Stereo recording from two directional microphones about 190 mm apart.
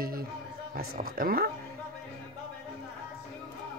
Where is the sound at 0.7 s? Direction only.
50° right (ahead or behind).